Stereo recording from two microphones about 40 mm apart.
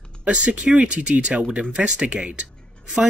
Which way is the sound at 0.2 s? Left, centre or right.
Right.